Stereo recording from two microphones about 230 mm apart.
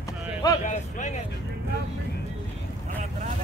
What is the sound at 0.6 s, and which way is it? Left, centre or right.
Vehicle, left.